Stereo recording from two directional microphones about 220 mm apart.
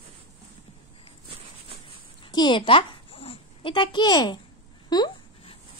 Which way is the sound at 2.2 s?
20° left (ahead or behind).